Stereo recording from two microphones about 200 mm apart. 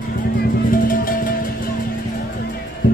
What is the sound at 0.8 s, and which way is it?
Music, 45° left (ahead or behind).